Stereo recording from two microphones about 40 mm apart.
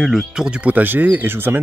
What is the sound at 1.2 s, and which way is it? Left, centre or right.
Speech, right.